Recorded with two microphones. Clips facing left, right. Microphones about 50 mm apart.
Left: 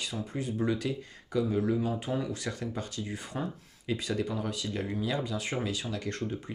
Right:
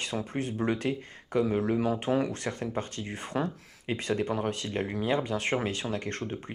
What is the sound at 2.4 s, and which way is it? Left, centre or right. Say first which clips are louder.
Speech: right 3 dB; right.